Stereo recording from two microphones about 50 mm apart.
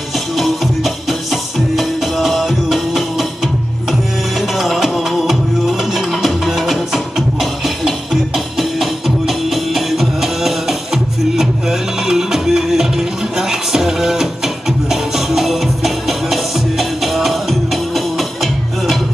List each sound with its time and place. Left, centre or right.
0.4 s music: centre
4.4 s music: centre